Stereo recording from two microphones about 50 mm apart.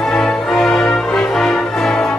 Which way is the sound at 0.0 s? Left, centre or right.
Centre.